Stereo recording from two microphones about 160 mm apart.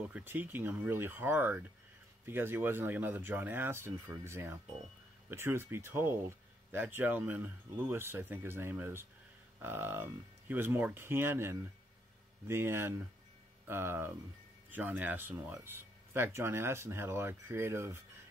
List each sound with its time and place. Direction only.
0.1 s speech: 10° right (ahead or behind)